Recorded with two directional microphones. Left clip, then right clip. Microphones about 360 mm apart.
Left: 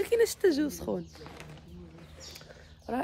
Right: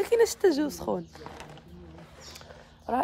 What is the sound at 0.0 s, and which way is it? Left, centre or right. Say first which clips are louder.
A woman's voice: right 3 dB; centre.